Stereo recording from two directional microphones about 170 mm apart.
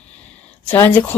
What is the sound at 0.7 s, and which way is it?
Speech, 10° left (ahead or behind).